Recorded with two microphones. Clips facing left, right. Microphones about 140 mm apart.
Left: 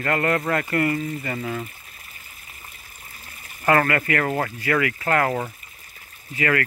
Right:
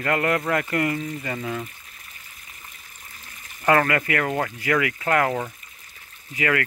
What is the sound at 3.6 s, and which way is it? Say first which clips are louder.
Speech: even; 15° right (ahead or behind).